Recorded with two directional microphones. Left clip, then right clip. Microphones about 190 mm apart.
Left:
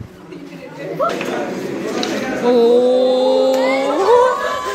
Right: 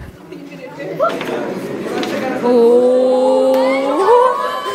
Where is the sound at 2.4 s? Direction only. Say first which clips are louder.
Right 2 dB; 15° right (ahead or behind).